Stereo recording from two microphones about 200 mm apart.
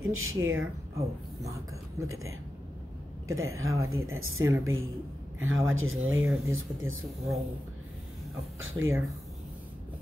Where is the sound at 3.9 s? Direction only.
90° right.